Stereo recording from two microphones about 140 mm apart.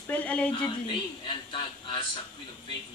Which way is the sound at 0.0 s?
10° left (ahead or behind).